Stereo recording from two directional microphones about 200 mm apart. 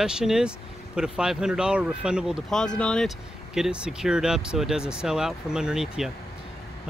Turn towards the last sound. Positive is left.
turn(degrees=-5)  # may be behind; listen again after turning